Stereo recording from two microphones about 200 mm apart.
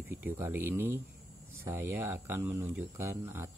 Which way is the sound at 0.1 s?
10° right (ahead or behind).